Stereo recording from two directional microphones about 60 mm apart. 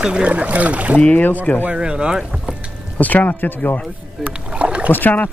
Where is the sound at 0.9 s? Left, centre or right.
Left.